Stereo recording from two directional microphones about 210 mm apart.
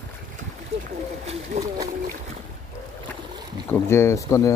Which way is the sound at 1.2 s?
30° right (ahead or behind).